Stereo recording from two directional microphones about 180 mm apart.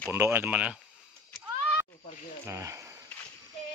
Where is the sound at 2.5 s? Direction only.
15° right (ahead or behind).